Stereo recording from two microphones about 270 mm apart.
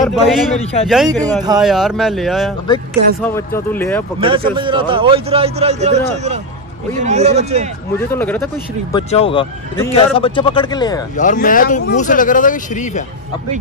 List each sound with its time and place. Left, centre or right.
0.0 s a man's voice: centre
1.2 s speech: centre
1.6 s a man's voice: centre
4.2 s a man's voice: centre
8.1 s speech: centre
8.9 s speech: centre
11.1 s speech: left